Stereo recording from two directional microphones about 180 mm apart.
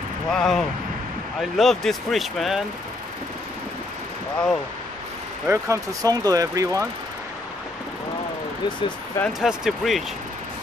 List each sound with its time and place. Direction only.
0.3 s speech: centre (ahead or behind)
5.5 s speech: 15° right (ahead or behind)
8.6 s speech: 25° left (ahead or behind)
9.2 s speech: centre (ahead or behind)